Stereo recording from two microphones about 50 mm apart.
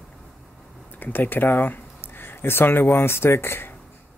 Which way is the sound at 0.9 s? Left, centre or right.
Left.